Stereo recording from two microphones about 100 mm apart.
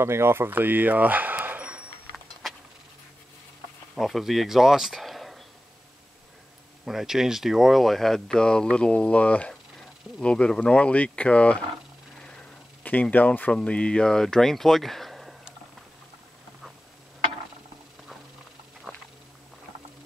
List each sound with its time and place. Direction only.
0.0 s a sound: 25° right (ahead or behind)
3.9 s speech: centre (ahead or behind)
6.8 s speech: 5° right (ahead or behind)